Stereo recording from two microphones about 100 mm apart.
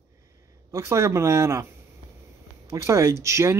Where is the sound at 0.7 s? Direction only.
30° right (ahead or behind).